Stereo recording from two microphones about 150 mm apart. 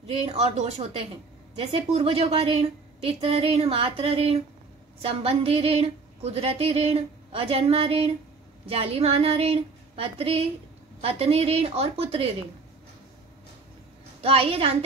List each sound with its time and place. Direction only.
0.0 s speech: 45° right (ahead or behind)
14.2 s speech: 40° right (ahead or behind)